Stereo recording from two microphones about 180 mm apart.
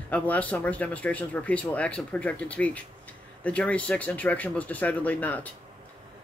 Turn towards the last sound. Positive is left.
turn(degrees=10)  # may be behind; listen again after turning